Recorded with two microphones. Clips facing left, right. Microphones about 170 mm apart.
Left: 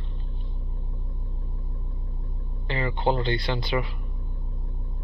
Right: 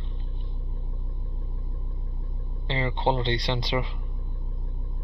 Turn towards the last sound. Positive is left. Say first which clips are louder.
# left 1 dB
turn(degrees=-20)  # may be behind; listen again after turning